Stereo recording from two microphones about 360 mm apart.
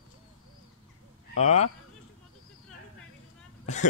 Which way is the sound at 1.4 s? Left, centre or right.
Centre.